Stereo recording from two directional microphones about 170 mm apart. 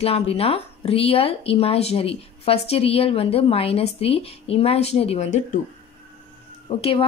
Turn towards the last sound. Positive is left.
turn(degrees=35)  # may be behind; listen again after turning